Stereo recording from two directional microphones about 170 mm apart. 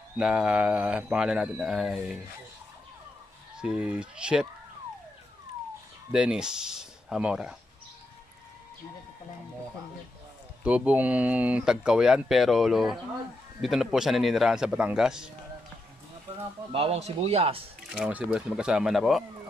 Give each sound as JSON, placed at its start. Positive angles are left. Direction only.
{"t": 0.2, "sound": "speech", "side_deg": -5}
{"t": 3.5, "sound": "speech", "side_deg": -5}
{"t": 6.1, "sound": "speech", "side_deg": -5}
{"t": 10.6, "sound": "speech", "side_deg": -5}
{"t": 16.7, "sound": "speech", "side_deg": -35}
{"t": 17.8, "sound": "speech", "side_deg": -5}